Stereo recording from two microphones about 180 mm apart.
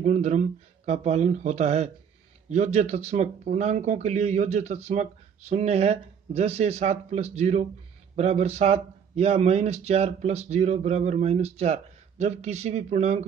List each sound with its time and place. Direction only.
0.0 s speech: 40° right (ahead or behind)